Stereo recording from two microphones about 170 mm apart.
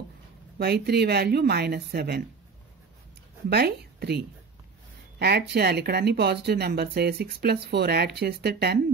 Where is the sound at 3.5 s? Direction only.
70° right (ahead or behind).